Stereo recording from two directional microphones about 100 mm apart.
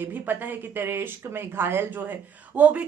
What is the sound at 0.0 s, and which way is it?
Speech, 20° right (ahead or behind).